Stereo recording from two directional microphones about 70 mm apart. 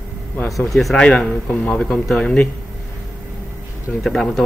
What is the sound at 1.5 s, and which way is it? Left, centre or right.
Speech, centre.